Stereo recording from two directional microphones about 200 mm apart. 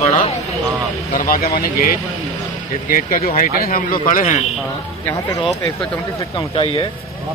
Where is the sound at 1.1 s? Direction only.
45° left (ahead or behind).